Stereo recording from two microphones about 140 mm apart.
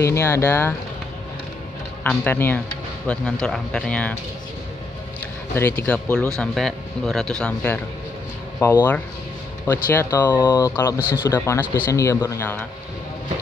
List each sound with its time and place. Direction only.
0.0 s speech: 20° left (ahead or behind)
2.0 s speech: 15° left (ahead or behind)
5.5 s speech: 15° left (ahead or behind)